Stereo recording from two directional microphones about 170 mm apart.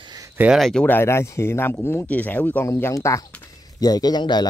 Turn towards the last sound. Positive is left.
turn(degrees=25)  # may be behind; listen again after turning